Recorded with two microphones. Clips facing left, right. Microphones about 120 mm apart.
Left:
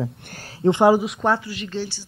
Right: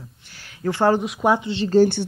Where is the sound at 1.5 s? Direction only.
30° right (ahead or behind).